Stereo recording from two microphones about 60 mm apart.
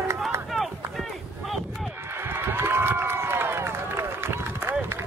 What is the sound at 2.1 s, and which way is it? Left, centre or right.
Run, right.